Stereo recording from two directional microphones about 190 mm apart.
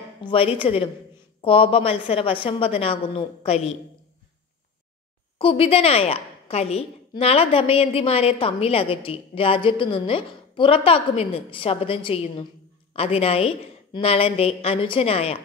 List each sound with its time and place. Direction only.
0.2 s a woman's voice: 30° left (ahead or behind)
5.4 s a woman's voice: 30° left (ahead or behind)